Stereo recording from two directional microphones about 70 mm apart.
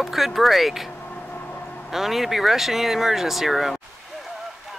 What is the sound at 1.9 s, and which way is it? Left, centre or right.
Speech, centre.